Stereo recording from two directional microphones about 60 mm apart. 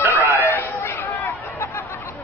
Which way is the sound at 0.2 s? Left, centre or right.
Left.